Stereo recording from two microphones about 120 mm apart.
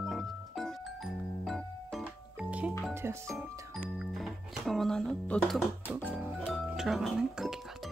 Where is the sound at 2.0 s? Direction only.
10° right (ahead or behind).